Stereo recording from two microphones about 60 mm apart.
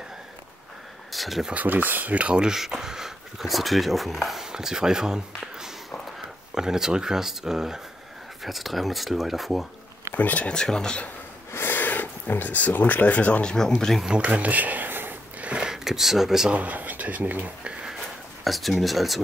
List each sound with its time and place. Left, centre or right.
1.1 s a sound: centre
1.5 s speech: right; by 9.7 s centre
10.1 s speech: left
10.5 s speech: centre
11.5 s speech: left; by 14.0 s centre
14.0 s speech: centre; by 15.1 s right
15.4 s a sound: centre
16.5 s speech: right
18.4 s speech: centre